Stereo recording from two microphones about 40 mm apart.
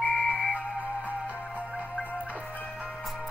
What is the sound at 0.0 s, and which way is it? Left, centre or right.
Music, left.